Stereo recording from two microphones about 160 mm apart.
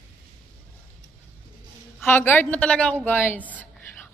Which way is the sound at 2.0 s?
15° left (ahead or behind).